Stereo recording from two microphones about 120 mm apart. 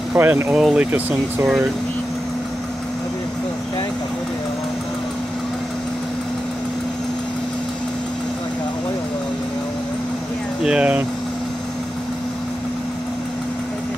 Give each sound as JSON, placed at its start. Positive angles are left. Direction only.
{"t": 0.1, "sound": "speech", "side_deg": -15}
{"t": 10.6, "sound": "speech", "side_deg": -10}